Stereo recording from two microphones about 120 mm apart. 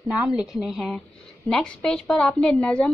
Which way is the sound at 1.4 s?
5° left (ahead or behind).